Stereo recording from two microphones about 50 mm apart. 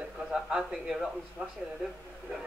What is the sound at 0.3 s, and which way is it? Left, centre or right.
Speech, centre.